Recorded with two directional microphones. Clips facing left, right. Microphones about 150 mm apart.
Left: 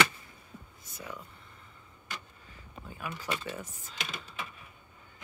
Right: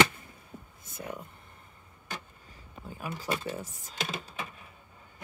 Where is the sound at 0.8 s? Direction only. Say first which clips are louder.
Right 4 dB; 50° right (ahead or behind).